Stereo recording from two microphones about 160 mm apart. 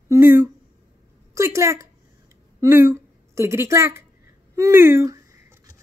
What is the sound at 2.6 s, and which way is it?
A woman's voice, 15° right (ahead or behind).